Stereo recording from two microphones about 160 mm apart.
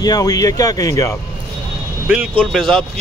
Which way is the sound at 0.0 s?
25° left (ahead or behind).